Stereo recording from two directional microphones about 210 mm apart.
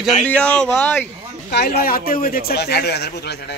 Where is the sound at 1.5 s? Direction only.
50° left (ahead or behind).